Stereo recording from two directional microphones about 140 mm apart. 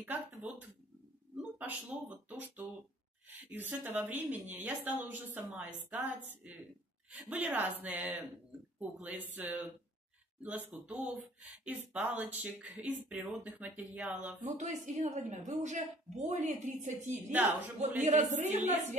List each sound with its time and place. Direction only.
0.0 s speech: 10° right (ahead or behind)
7.2 s speech: 10° right (ahead or behind)
10.7 s speech: 10° right (ahead or behind)
14.4 s a woman's voice: 60° right (ahead or behind)
17.1 s speech: 10° right (ahead or behind)
17.5 s a woman's voice: 55° right (ahead or behind)